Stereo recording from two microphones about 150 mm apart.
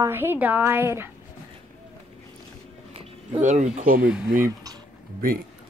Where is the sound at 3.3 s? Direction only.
50° right (ahead or behind); by 4.1 s 70° right (ahead or behind).